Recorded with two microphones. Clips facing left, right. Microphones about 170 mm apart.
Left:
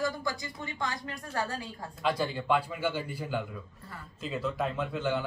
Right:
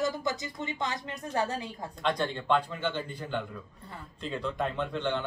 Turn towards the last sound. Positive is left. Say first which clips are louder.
# even
turn(degrees=5)  # may be behind; listen again after turning